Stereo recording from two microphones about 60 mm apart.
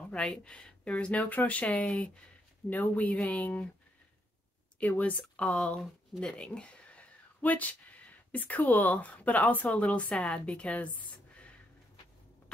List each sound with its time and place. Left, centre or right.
0.1 s speech: centre
4.7 s speech: left